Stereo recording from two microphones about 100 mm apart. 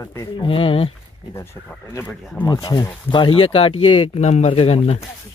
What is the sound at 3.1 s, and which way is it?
Speech, 60° left (ahead or behind).